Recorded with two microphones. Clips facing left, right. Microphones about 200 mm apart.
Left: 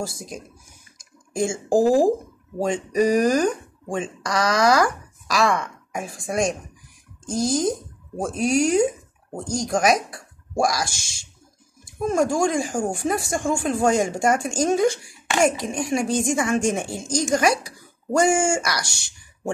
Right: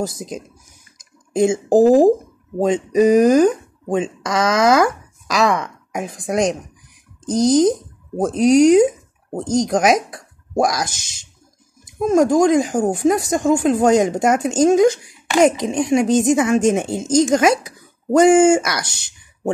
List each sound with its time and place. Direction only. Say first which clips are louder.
0.0 s speech: right 6 dB; 20° right (ahead or behind)